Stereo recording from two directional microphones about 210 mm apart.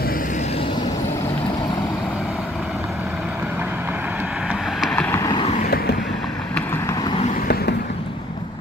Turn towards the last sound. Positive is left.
turn(degrees=50)  # may be behind; listen again after turning